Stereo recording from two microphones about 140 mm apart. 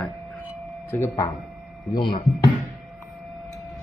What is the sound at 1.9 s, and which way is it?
Speech, 35° left (ahead or behind).